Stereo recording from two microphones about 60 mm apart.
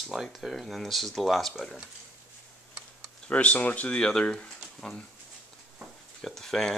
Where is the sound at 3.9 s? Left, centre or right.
Centre.